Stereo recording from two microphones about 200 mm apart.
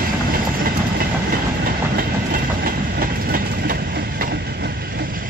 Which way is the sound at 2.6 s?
45° right (ahead or behind).